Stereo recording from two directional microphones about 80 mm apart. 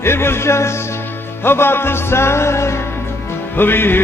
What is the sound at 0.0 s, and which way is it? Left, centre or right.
A man's voice, left.